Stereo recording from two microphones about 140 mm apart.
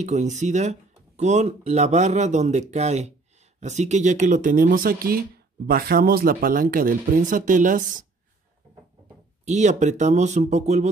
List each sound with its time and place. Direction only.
0.0 s speech: 55° right (ahead or behind)
9.4 s speech: 55° right (ahead or behind)